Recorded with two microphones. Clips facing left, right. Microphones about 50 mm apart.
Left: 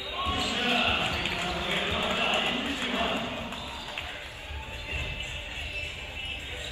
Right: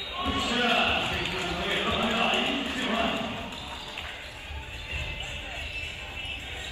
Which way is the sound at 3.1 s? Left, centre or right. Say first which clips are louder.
Even; left.